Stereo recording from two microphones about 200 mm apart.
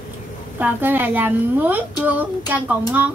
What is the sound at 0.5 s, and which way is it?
A woman's voice, 10° right (ahead or behind).